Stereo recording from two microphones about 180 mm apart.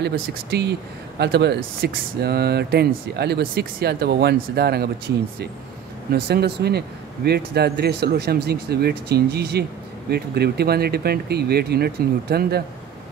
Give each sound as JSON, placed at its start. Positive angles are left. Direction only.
{"t": 0.0, "sound": "speech", "side_deg": -60}
{"t": 6.2, "sound": "speech", "side_deg": -65}